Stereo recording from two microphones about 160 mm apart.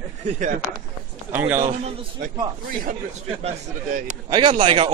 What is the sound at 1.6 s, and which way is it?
Speech, 50° right (ahead or behind).